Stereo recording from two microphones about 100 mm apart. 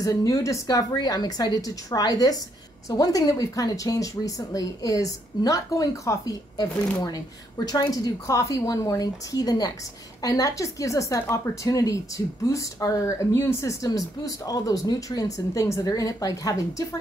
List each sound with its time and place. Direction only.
0.0 s speech: 35° left (ahead or behind)